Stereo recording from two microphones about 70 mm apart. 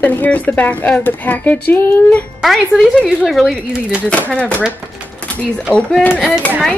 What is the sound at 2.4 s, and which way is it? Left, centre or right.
Speech, centre.